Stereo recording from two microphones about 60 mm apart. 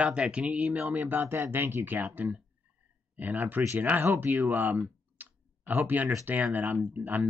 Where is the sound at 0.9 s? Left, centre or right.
Right.